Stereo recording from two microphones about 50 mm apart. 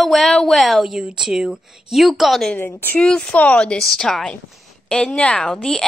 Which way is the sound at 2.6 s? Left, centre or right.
Left.